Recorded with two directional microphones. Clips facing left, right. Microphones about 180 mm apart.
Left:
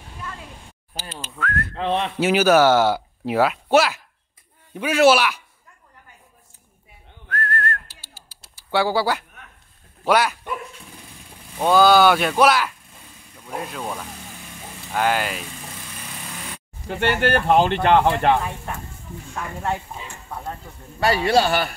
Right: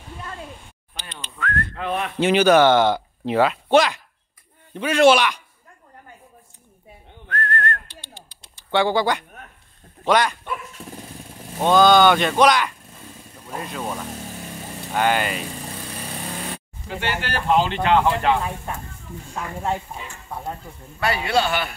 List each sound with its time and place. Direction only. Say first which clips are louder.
0.9 s whistling: left 4 dB; 5° left (ahead or behind)
1.8 s speech: left 5 dB; 30° left (ahead or behind)
2.1 s a man's voice: right 2 dB; 5° left (ahead or behind)
7.2 s whistling: right 1 dB; 5° left (ahead or behind)
10.0 s a man's voice: even; 5° left (ahead or behind)
11.6 s speech: even; 5° left (ahead or behind)
16.8 s speech: left 7 dB; 55° left (ahead or behind)
19.9 s speech: right 1 dB; 5° right (ahead or behind)
21.0 s a man's voice: left 3 dB; 30° left (ahead or behind)